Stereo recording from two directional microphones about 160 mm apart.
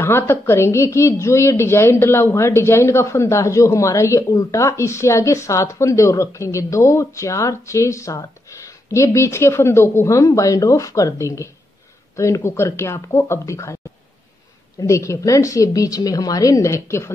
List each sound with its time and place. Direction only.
0.0 s a woman's voice: 15° left (ahead or behind)
14.8 s a woman's voice: 20° left (ahead or behind)